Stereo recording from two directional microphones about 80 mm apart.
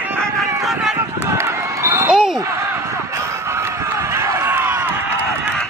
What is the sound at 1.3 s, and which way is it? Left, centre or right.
Run, right.